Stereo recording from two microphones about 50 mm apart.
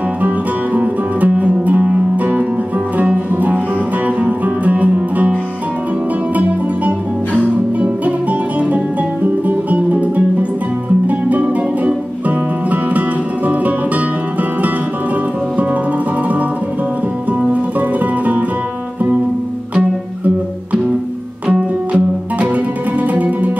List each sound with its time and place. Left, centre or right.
0.7 s music: right
7.8 s music: right
13.5 s music: right
17.3 s music: right
21.5 s music: right